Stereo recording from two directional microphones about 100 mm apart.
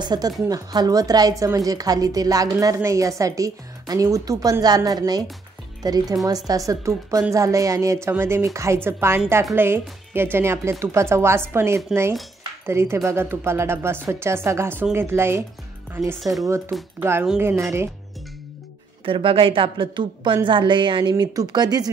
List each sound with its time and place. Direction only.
0.0 s a woman's voice: 45° right (ahead or behind); by 16.2 s 25° right (ahead or behind)
16.2 s speech: centre (ahead or behind)
16.4 s speech: 30° right (ahead or behind)
19.0 s a woman's voice: 65° right (ahead or behind)
21.1 s a woman's voice: 40° right (ahead or behind)